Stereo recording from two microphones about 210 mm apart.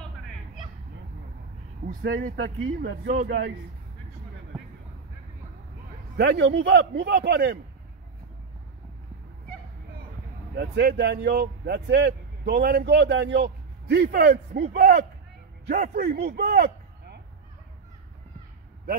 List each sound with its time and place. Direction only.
1.9 s speech: 40° right (ahead or behind)
2.3 s speech: 75° right (ahead or behind)
2.8 s a man's voice: 55° right (ahead or behind)
6.1 s a man's voice: 55° right (ahead or behind)
10.5 s speech: 50° right (ahead or behind)